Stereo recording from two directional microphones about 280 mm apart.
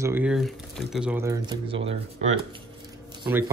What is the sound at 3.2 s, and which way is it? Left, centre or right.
Speech, centre.